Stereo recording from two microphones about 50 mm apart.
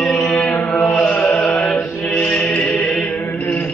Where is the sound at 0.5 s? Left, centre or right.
Left.